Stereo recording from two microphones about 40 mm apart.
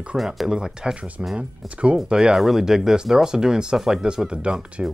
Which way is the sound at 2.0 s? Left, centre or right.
Right.